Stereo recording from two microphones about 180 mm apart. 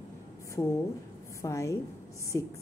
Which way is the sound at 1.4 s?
15° left (ahead or behind).